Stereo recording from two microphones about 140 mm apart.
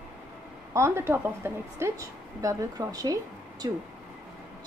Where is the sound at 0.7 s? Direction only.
20° right (ahead or behind).